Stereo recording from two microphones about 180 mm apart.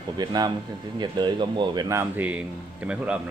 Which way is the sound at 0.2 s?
25° right (ahead or behind).